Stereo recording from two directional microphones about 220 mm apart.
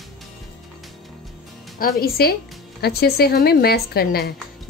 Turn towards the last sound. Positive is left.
turn(degrees=45)  # may be behind; listen again after turning